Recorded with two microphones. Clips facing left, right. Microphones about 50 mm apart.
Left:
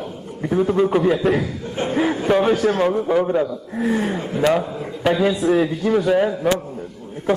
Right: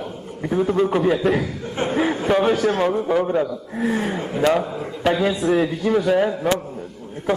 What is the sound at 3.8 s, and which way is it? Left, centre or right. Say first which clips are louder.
Speech: left 1 dB; right.